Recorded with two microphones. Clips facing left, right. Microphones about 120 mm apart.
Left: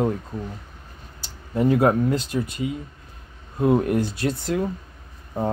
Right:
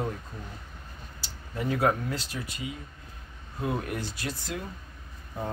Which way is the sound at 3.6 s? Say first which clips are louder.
Left 12 dB; 40° left (ahead or behind).